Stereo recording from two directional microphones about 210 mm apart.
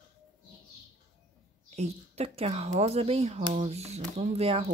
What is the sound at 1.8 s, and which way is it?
Speech, 30° right (ahead or behind).